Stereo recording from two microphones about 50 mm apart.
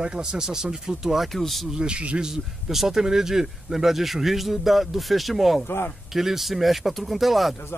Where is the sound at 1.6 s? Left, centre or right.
Centre.